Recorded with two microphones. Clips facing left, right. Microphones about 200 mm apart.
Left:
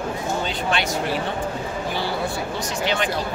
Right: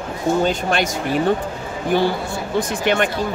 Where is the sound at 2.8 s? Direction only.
55° right (ahead or behind).